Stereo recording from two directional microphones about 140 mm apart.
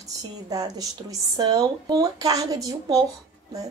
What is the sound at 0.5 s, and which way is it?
A woman's voice, 25° right (ahead or behind).